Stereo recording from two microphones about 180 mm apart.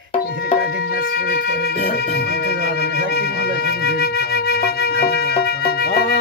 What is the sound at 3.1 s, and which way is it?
Flute, 60° left (ahead or behind).